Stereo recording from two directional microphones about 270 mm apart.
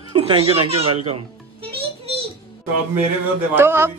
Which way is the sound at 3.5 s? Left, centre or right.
Centre.